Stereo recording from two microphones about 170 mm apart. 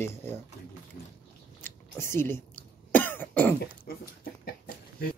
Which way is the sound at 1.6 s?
15° left (ahead or behind).